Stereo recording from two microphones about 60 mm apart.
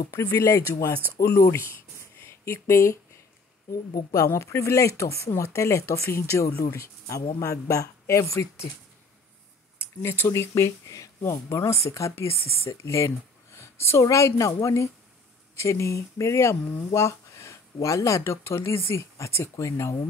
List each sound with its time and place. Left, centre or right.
0.1 s speech: left
4.3 s speech: left
6.7 s speech: left
9.8 s speech: left
12.8 s a sound: left
14.1 s speech: left